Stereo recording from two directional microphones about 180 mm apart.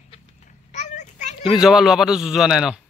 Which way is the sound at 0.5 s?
40° left (ahead or behind).